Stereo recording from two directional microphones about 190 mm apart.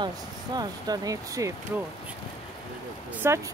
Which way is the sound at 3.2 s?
15° right (ahead or behind).